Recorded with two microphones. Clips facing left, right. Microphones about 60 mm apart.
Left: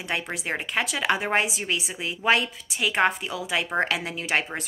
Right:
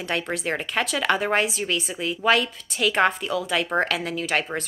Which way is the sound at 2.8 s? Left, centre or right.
Centre.